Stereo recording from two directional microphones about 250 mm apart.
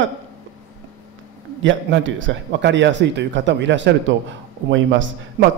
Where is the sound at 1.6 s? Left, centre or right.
Right.